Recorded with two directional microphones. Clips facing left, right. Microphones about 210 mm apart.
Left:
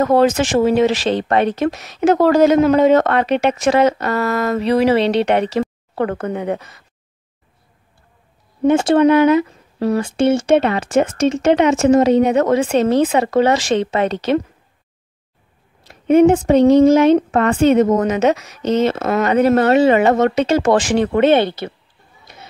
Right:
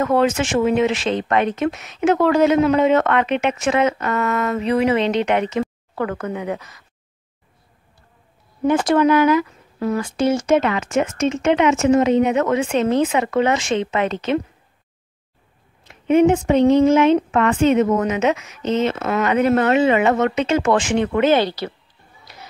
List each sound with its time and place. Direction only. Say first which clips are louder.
0.0 s speech: left 4 dB; 40° left (ahead or behind)
8.6 s speech: left 4 dB; 25° left (ahead or behind)
15.8 s speech: left 3 dB; 40° left (ahead or behind)